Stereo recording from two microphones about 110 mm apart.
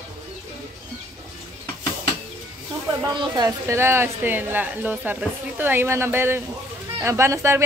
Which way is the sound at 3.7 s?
20° right (ahead or behind).